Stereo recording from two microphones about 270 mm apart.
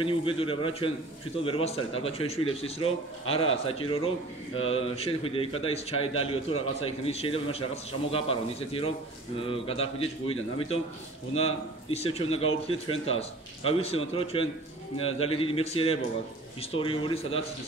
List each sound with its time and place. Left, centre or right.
0.0 s a man's voice: centre